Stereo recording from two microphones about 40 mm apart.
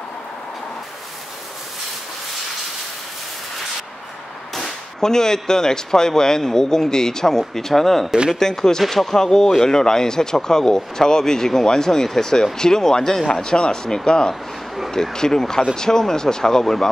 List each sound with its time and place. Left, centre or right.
4.6 s speech: centre